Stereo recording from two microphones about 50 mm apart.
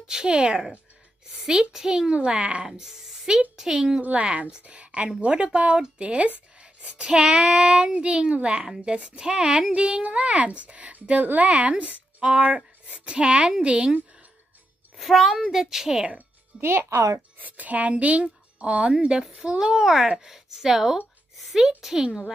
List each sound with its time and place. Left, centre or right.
0.0 s a child's voice: centre
8.6 s a child's voice: centre
15.0 s a woman's voice: centre
16.5 s speech: right
17.4 s a woman's voice: right; by 21.0 s centre
21.4 s a sound: centre
21.6 s a child's voice: centre